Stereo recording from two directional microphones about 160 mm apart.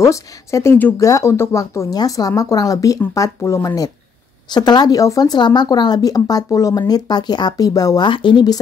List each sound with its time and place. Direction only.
0.0 s speech: 20° left (ahead or behind)